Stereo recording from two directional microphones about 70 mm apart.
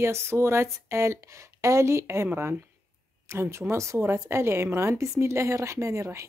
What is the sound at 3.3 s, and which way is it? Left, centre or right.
A woman's voice, right.